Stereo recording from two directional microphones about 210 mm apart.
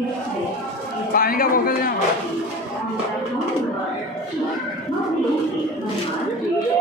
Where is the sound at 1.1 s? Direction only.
45° left (ahead or behind).